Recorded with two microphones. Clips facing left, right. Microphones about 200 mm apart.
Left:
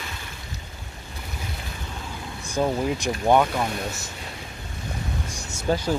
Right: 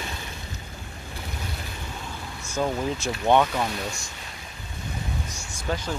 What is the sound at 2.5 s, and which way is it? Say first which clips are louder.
Speech: left 3 dB; 15° left (ahead or behind).